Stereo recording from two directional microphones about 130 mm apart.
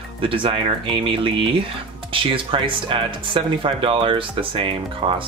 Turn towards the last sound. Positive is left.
turn(degrees=-40)  # may be behind; listen again after turning